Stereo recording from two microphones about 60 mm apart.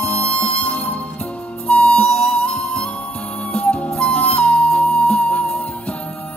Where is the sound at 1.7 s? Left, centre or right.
Left.